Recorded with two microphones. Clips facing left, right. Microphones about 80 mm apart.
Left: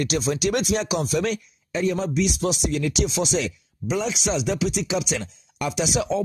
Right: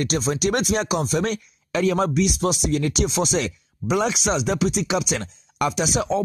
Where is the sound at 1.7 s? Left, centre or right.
Right.